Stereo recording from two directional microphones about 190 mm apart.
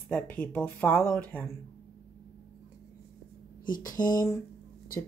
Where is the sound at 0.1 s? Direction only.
10° left (ahead or behind).